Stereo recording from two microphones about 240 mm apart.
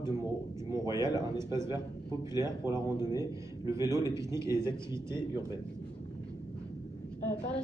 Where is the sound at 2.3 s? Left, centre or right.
Centre.